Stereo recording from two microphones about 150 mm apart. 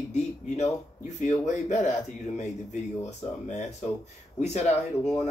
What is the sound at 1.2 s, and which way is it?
Speech, 50° left (ahead or behind).